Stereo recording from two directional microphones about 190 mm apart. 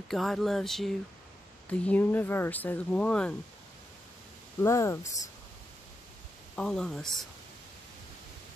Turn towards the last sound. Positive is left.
turn(degrees=0)  # may be behind; listen again after turning